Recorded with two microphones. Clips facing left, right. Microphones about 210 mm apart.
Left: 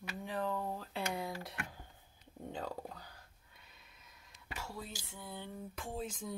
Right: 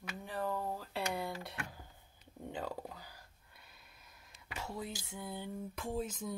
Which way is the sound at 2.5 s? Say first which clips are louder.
Right 1 dB; 10° right (ahead or behind).